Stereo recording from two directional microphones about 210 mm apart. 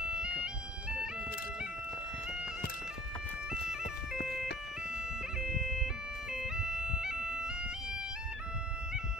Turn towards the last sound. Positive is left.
turn(degrees=-5)  # may be behind; listen again after turning